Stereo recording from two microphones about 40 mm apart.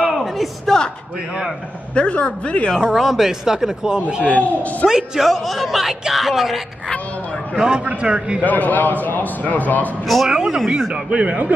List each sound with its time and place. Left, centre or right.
0.1 s a sound: centre
2.0 s a man's voice: left
2.8 s speech: centre
4.2 s a man's voice: left
4.8 s speech: centre
5.3 s speech: centre
7.5 s a man's voice: right
8.4 s a man's voice: left
10.0 s speech: centre
10.3 s a man's voice: centre
11.1 s speech: right